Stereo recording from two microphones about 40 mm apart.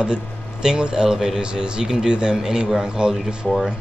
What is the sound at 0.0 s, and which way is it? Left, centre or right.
Speech, centre.